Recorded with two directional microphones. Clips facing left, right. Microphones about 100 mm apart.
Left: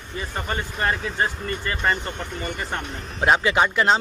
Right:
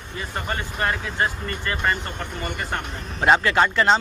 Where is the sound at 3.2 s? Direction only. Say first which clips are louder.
Right 1 dB; 5° left (ahead or behind).